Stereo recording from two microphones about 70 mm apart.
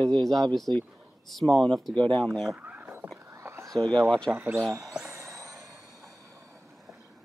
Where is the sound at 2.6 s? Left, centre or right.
Right.